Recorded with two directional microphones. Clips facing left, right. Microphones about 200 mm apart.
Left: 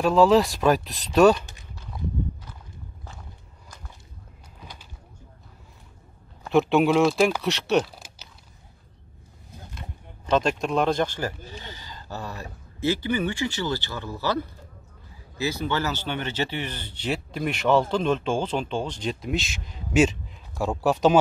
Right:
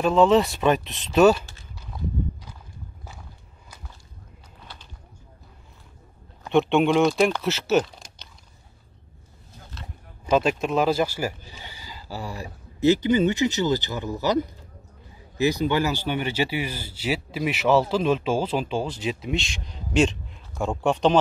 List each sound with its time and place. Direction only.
0.0 s speech: centre (ahead or behind)
4.6 s bird: 10° left (ahead or behind)
6.4 s speech: centre (ahead or behind)
10.2 s a man's voice: 5° right (ahead or behind)